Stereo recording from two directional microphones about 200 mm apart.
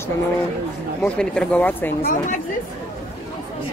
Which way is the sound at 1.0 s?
5° left (ahead or behind).